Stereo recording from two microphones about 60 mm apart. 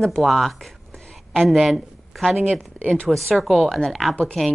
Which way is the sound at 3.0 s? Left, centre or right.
Centre.